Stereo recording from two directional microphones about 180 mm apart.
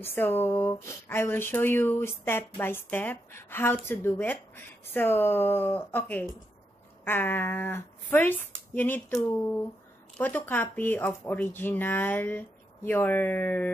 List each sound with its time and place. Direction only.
0.0 s speech: 10° left (ahead or behind)